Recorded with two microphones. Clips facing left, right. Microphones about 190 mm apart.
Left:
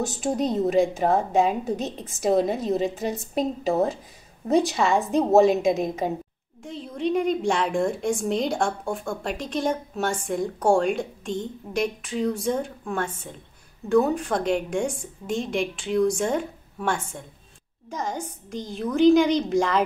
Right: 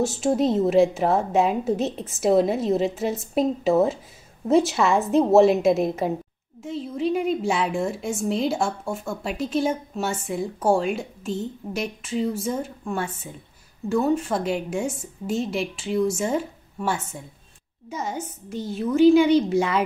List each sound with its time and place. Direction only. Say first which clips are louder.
0.1 s a woman's voice: right 4 dB; centre (ahead or behind)